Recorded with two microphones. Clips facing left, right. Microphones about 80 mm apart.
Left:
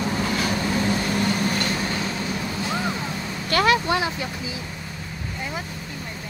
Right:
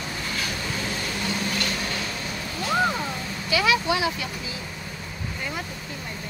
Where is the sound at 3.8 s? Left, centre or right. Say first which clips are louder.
Left 1 dB; left.